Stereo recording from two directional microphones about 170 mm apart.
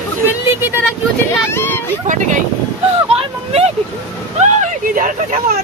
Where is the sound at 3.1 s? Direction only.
40° right (ahead or behind).